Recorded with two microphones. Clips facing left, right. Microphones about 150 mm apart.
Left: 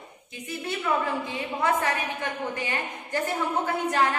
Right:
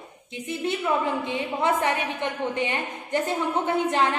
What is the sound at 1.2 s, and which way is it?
A woman's voice, 20° right (ahead or behind).